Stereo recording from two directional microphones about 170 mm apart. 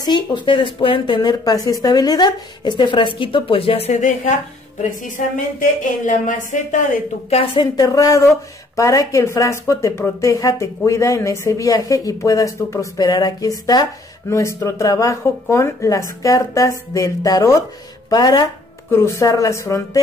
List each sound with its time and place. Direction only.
0.0 s a woman's voice: 25° left (ahead or behind)
7.6 s speech: 20° left (ahead or behind)